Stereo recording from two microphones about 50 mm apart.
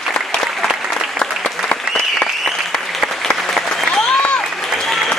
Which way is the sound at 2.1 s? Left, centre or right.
Centre.